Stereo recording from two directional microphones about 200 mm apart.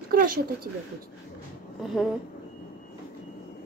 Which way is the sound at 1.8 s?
Centre (ahead or behind).